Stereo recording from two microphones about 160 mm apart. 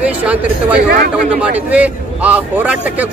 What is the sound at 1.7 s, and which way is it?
Speech, 10° right (ahead or behind).